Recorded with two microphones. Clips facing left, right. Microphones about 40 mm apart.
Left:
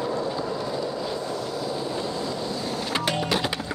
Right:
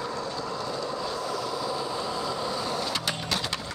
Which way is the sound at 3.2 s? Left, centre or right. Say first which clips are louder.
Left 5 dB; centre.